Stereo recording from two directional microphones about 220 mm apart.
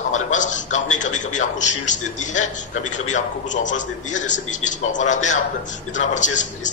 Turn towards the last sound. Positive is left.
turn(degrees=35)  # may be behind; listen again after turning